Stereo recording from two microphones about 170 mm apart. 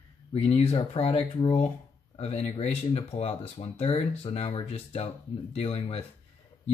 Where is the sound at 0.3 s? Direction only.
35° left (ahead or behind).